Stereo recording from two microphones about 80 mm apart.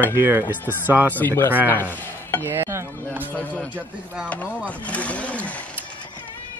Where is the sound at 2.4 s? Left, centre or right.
Right.